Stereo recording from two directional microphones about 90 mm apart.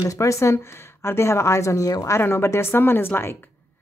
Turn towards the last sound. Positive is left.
turn(degrees=25)  # may be behind; listen again after turning